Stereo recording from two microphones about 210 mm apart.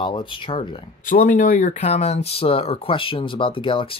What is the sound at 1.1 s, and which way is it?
Speech, 40° left (ahead or behind).